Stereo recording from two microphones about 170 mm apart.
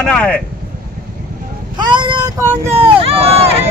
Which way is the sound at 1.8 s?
25° right (ahead or behind).